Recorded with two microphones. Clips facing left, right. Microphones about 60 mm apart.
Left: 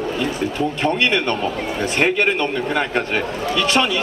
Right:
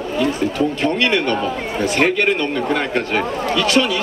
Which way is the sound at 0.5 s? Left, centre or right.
Left.